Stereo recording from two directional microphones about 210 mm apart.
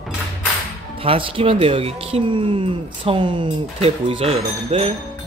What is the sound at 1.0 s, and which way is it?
Speech, 25° right (ahead or behind).